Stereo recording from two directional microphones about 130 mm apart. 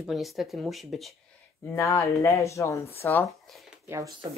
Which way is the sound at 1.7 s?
25° left (ahead or behind).